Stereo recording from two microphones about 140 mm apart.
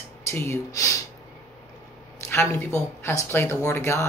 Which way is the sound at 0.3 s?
20° left (ahead or behind).